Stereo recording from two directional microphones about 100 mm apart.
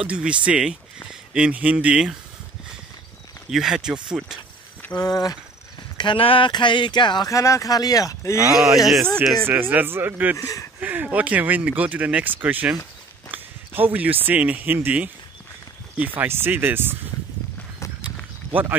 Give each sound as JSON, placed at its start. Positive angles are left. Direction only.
{"t": 0.0, "sound": "speech", "side_deg": -10}
{"t": 3.4, "sound": "speech", "side_deg": -5}
{"t": 4.9, "sound": "speech", "side_deg": 40}
{"t": 5.9, "sound": "speech", "side_deg": 60}
{"t": 7.2, "sound": "speech", "side_deg": 30}
{"t": 8.7, "sound": "speech", "side_deg": 0}
{"t": 9.5, "sound": "speech", "side_deg": -20}
{"t": 10.3, "sound": "speech", "side_deg": 35}
{"t": 10.8, "sound": "speech", "side_deg": -15}
{"t": 16.2, "sound": "speech", "side_deg": -20}
{"t": 18.5, "sound": "speech", "side_deg": -20}